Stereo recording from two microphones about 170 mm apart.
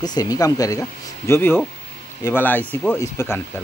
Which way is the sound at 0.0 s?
20° left (ahead or behind).